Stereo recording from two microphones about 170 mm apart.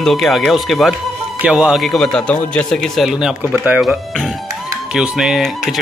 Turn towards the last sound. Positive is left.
turn(degrees=0)  # may be behind; listen again after turning